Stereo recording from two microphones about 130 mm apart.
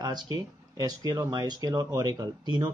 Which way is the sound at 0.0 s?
30° right (ahead or behind).